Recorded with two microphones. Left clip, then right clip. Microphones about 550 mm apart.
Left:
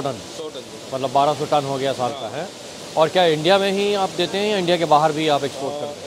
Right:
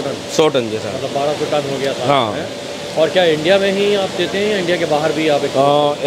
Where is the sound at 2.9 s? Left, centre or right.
Left.